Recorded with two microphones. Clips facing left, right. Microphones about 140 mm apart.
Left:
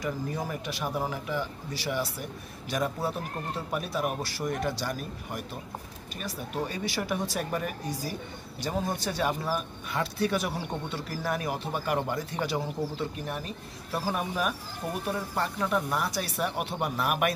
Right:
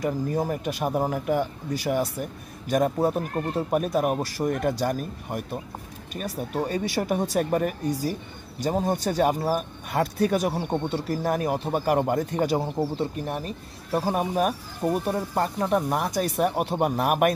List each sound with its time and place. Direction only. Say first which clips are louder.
0.0 s speech: right 7 dB; 45° right (ahead or behind)